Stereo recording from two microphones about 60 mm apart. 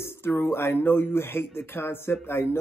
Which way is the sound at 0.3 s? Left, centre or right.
Left.